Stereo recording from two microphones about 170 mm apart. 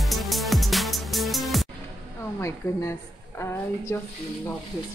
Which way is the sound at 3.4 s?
15° left (ahead or behind).